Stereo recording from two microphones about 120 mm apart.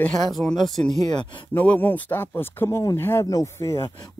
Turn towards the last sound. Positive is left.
turn(degrees=25)  # may be behind; listen again after turning